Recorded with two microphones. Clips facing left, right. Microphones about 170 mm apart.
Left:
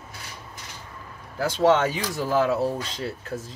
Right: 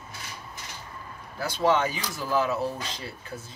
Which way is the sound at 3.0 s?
90° left.